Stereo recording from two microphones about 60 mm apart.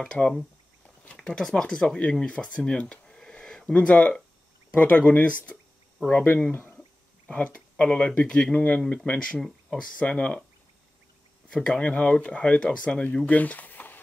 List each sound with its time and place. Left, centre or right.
0.0 s speech: centre
3.8 s speech: left
7.2 s speech: left
9.3 s speech: centre
9.9 s speech: centre
11.4 s speech: centre; by 13.9 s left